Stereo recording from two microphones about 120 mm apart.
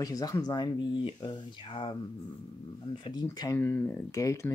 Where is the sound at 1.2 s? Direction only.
45° left (ahead or behind).